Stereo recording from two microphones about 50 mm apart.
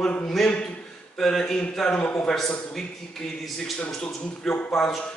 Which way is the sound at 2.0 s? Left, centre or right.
Left.